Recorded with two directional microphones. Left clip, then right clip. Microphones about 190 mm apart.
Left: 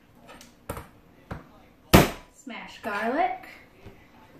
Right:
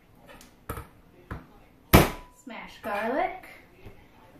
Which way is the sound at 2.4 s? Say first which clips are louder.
Left 2 dB; 5° right (ahead or behind).